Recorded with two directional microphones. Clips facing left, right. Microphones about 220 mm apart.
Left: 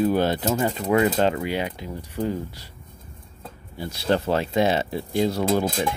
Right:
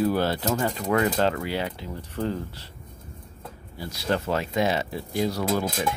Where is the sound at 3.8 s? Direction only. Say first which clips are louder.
Left 4 dB; 25° left (ahead or behind).